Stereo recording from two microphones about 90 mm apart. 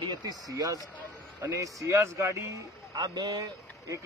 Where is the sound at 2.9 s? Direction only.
45° right (ahead or behind).